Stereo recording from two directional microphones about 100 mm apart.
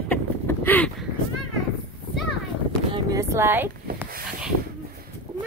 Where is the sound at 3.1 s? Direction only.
30° right (ahead or behind).